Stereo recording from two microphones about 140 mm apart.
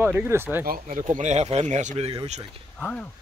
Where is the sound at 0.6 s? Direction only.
90° right.